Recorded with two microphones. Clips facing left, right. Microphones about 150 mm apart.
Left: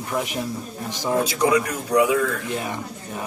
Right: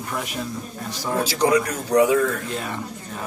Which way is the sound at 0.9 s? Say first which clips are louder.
Left 3 dB; 20° left (ahead or behind).